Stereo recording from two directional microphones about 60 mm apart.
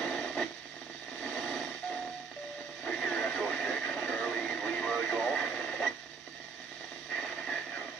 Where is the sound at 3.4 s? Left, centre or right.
Centre.